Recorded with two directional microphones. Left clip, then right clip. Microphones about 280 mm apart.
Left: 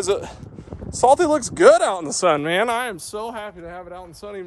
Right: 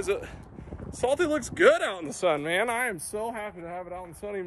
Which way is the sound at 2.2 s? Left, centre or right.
Left.